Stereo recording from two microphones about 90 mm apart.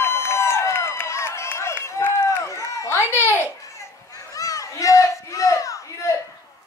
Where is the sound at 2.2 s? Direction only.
35° left (ahead or behind).